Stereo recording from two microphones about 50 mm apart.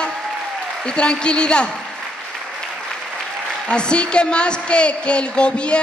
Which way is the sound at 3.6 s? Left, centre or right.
Centre.